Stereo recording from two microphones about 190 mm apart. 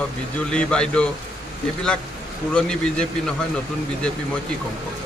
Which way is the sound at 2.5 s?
5° left (ahead or behind).